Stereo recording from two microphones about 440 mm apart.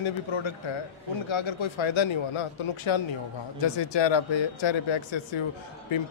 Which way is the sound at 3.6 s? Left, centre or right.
Left.